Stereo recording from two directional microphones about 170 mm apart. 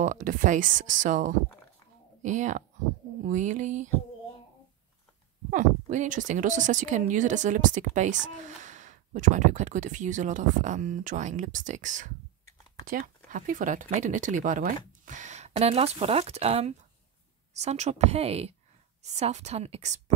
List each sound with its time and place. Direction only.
0.0 s speech: 50° right (ahead or behind)
5.5 s a woman's voice: 45° right (ahead or behind)